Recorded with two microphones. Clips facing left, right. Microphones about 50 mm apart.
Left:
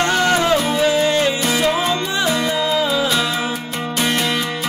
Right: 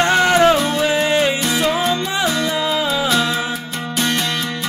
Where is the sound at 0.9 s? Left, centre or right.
Right.